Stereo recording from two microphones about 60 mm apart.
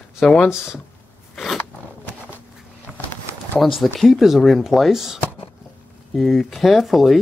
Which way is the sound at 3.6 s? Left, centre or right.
Centre.